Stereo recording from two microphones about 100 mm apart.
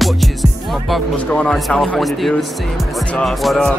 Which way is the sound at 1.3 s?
10° left (ahead or behind).